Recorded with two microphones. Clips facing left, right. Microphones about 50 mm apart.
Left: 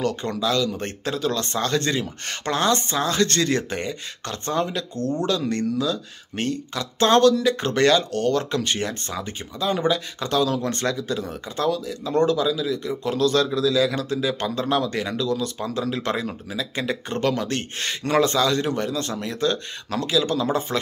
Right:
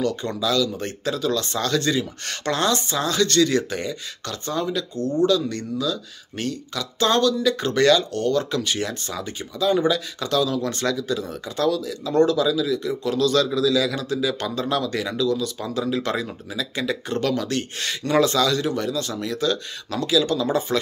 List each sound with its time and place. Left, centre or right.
0.0 s speech: left
4.9 s speech: left